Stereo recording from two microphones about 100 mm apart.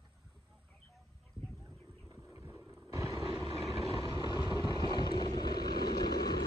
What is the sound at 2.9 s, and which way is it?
Vehicle, 30° right (ahead or behind).